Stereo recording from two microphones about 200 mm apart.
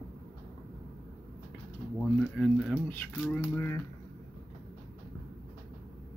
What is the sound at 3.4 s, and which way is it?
Speech, 15° left (ahead or behind).